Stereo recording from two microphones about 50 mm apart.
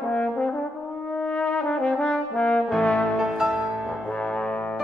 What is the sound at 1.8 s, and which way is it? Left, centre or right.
Brass instrument, centre.